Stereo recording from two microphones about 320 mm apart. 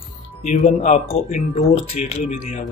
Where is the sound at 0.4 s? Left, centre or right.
Left.